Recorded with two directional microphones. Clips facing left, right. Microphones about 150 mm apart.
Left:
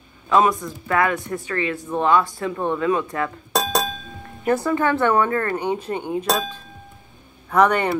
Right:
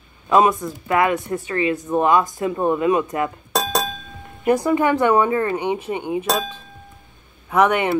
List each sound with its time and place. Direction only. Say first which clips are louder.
0.3 s speech: right 2 dB; 20° right (ahead or behind)
3.5 s chink: left 1 dB; centre (ahead or behind)
4.5 s speech: right 3 dB; 15° right (ahead or behind); by 6.5 s centre (ahead or behind)
7.4 s speech: even; 10° right (ahead or behind)